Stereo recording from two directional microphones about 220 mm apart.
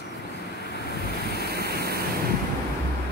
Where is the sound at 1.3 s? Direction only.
45° right (ahead or behind).